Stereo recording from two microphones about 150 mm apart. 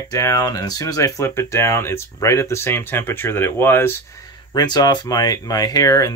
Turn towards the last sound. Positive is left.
turn(degrees=25)  # may be behind; listen again after turning